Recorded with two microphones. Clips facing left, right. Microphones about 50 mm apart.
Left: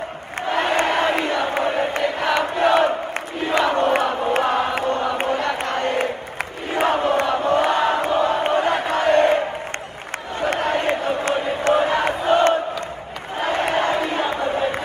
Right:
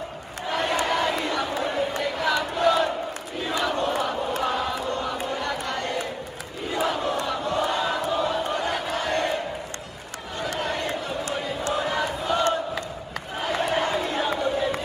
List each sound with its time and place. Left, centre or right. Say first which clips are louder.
0.5 s crowd: left 5 dB; left
3.4 s chant: left 7 dB; left
10.4 s a sound: left 7 dB; left
13.4 s crowd: left 4 dB; left